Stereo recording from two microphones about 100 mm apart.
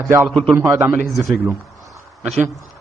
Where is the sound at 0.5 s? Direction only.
25° right (ahead or behind).